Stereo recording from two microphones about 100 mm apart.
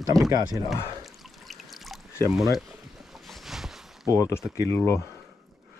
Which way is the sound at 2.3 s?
5° right (ahead or behind).